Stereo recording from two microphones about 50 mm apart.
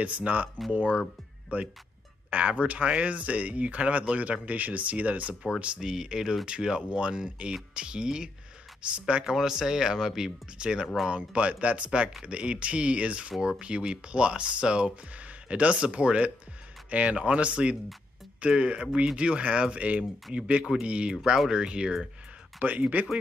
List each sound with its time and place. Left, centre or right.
0.0 s speech: right
1.5 s speech: right
9.2 s speech: centre
21.2 s speech: centre; by 23.0 s right